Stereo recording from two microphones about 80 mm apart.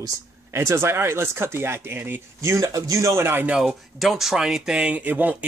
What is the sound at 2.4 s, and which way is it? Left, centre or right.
Speech, right.